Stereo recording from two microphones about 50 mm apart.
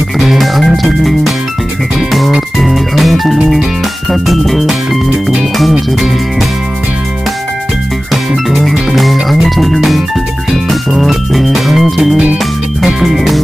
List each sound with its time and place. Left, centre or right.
0.2 s music: centre
8.1 s music: centre